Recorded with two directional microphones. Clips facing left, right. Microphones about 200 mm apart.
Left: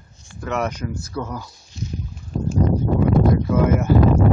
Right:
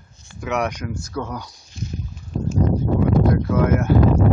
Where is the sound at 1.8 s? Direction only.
55° right (ahead or behind).